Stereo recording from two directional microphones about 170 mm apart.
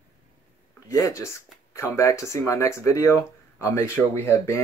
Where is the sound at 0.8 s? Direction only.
15° left (ahead or behind).